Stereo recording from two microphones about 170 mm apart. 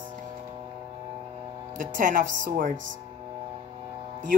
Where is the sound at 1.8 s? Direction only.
55° right (ahead or behind).